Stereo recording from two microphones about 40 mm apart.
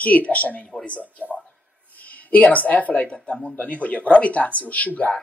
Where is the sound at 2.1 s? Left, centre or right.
Left.